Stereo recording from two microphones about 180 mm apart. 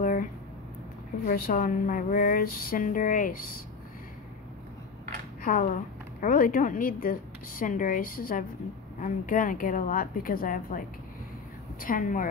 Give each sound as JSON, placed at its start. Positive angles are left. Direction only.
{"t": 0.0, "sound": "a sound", "side_deg": 50}
{"t": 1.2, "sound": "speech", "side_deg": 50}
{"t": 5.4, "sound": "speech", "side_deg": 50}